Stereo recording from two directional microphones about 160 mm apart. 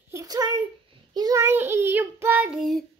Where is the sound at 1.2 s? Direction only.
20° right (ahead or behind); by 2.8 s centre (ahead or behind).